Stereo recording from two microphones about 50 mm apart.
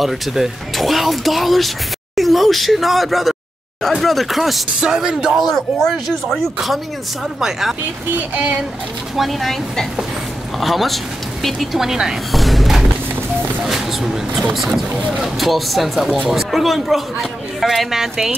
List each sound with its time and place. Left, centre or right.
0.0 s a man's voice: centre
4.7 s speech: centre
5.4 s a man's voice: centre
8.4 s speech: right
9.1 s a man's voice: centre
12.3 s a sound: centre
14.8 s a man's voice: centre